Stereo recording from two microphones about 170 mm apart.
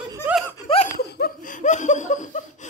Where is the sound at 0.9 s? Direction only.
60° left (ahead or behind).